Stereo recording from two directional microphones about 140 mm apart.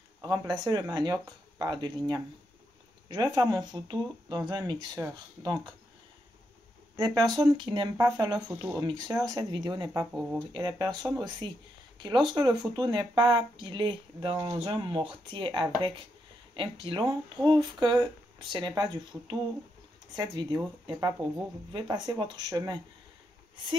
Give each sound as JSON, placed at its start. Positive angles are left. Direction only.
{"t": 0.2, "sound": "speech", "side_deg": -30}
{"t": 7.3, "sound": "speech", "side_deg": -35}
{"t": 10.1, "sound": "speech", "side_deg": -10}
{"t": 10.8, "sound": "speech", "side_deg": -30}